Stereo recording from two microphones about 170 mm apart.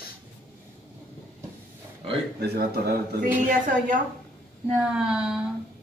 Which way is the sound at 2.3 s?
70° right (ahead or behind).